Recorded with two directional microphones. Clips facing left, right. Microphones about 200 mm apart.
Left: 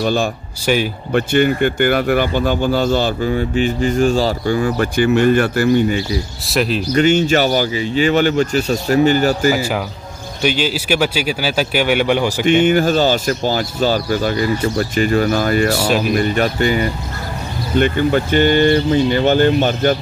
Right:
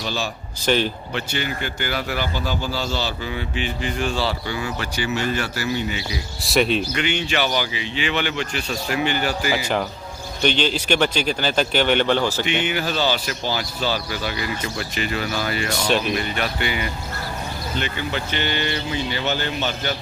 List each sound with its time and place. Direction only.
0.0 s speech: 50° left (ahead or behind)
0.7 s speech: 10° left (ahead or behind)
1.1 s speech: 55° left (ahead or behind)
6.4 s speech: centre (ahead or behind)
6.9 s speech: 40° left (ahead or behind)
10.4 s speech: 5° left (ahead or behind)
12.4 s speech: 45° left (ahead or behind)